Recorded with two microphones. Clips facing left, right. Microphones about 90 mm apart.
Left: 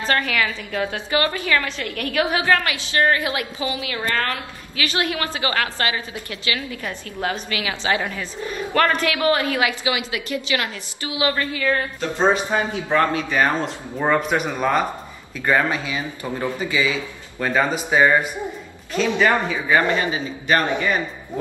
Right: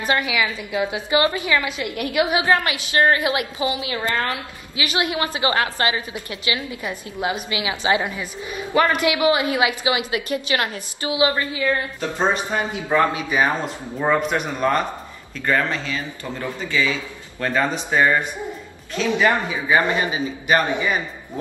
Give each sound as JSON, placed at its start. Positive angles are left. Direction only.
{"t": 0.0, "sound": "a woman's voice", "side_deg": -10}
{"t": 11.6, "sound": "a woman's voice", "side_deg": -10}
{"t": 14.0, "sound": "speech", "side_deg": 0}
{"t": 19.1, "sound": "a woman's voice", "side_deg": -15}